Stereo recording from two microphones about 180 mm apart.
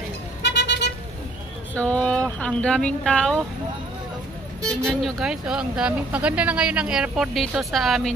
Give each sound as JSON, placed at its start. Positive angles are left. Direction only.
{"t": 0.5, "sound": "vehicle", "side_deg": 75}
{"t": 1.8, "sound": "speech", "side_deg": 10}
{"t": 4.6, "sound": "speech", "side_deg": 0}